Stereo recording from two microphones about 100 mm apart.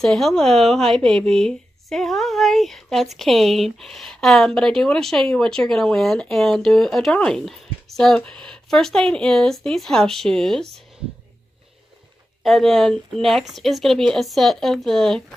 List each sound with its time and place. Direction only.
0.0 s a woman's voice: 5° left (ahead or behind)
12.4 s a woman's voice: centre (ahead or behind)